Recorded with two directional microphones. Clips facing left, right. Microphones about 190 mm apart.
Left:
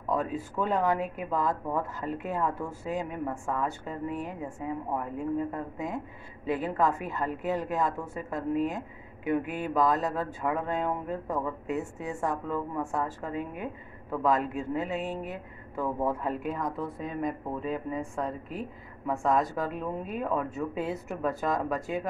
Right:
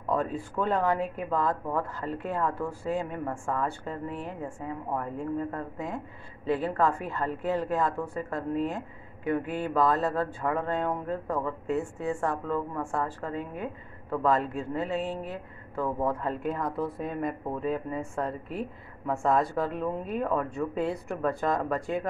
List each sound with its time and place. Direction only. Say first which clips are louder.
0.1 s speech: right 1 dB; centre (ahead or behind)
12.7 s speech: even; 15° left (ahead or behind)